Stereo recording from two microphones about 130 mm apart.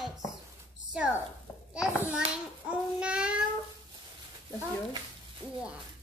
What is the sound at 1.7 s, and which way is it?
Speech, 5° right (ahead or behind).